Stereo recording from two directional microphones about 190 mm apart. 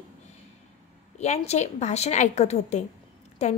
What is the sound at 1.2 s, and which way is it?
A woman's voice, 35° left (ahead or behind).